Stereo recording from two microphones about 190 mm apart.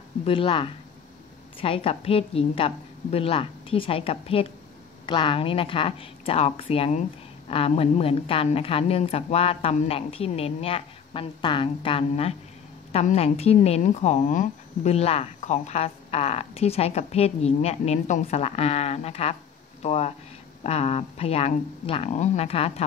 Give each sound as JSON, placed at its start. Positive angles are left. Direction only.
{"t": 0.2, "sound": "a woman's voice", "side_deg": 30}